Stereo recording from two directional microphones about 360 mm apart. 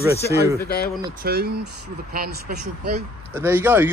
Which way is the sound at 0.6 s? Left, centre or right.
Left.